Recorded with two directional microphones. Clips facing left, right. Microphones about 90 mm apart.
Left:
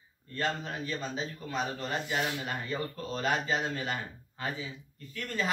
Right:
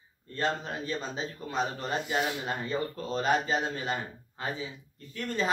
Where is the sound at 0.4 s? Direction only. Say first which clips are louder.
Right 2 dB; 25° right (ahead or behind).